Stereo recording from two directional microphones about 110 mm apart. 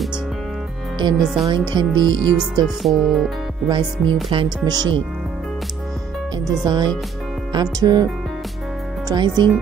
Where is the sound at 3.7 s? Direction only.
45° right (ahead or behind).